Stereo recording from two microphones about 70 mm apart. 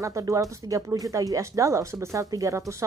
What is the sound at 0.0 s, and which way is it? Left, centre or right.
A woman's voice, right.